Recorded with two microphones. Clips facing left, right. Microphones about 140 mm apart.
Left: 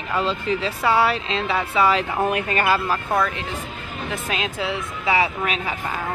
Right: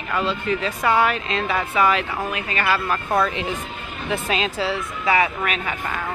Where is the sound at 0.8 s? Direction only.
10° left (ahead or behind).